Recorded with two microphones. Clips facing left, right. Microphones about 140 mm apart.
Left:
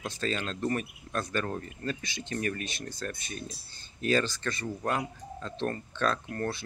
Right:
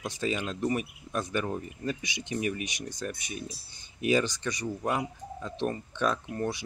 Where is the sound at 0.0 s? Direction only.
15° right (ahead or behind).